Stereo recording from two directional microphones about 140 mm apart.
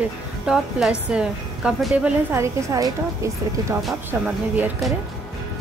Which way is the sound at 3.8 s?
10° right (ahead or behind).